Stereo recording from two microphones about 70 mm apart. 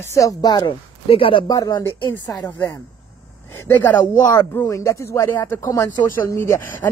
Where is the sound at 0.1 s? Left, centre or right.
Left.